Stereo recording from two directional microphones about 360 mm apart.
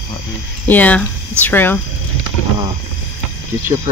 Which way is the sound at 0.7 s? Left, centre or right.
Centre.